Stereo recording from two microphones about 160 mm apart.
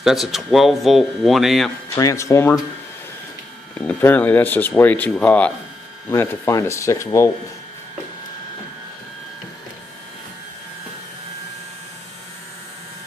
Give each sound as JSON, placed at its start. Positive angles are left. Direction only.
{"t": 0.0, "sound": "speech", "side_deg": 0}
{"t": 2.0, "sound": "speech", "side_deg": 20}
{"t": 3.8, "sound": "speech", "side_deg": 10}